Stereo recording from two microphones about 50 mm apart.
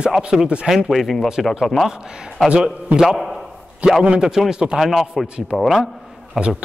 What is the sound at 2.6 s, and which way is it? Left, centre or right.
Speech, centre.